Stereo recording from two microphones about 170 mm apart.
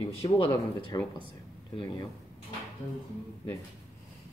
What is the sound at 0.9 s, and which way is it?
Speech, 25° left (ahead or behind).